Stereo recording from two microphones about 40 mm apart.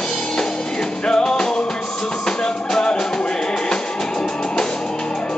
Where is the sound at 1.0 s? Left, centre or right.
Left.